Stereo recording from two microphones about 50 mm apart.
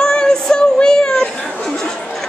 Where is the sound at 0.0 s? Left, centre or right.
Centre.